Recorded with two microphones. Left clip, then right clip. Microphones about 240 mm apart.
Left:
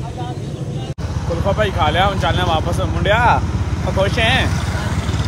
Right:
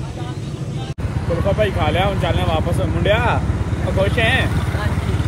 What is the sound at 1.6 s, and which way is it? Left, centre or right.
Speech, centre.